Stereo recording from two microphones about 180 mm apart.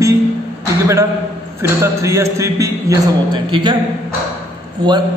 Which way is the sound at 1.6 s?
15° right (ahead or behind).